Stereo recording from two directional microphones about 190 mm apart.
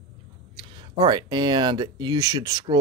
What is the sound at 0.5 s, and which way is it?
Speech, 25° right (ahead or behind).